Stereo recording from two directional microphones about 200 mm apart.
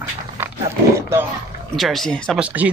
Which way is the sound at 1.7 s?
Centre (ahead or behind).